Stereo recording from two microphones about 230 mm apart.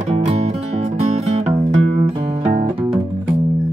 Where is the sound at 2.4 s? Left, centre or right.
Right.